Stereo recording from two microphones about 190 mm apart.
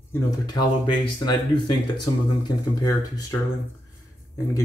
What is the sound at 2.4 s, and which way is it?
Speech, 20° left (ahead or behind).